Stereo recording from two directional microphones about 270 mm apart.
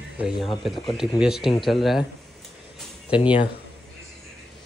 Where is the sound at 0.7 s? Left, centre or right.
Centre.